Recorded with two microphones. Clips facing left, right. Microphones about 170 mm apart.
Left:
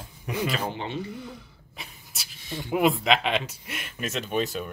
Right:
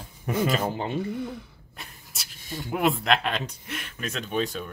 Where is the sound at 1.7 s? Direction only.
Centre (ahead or behind).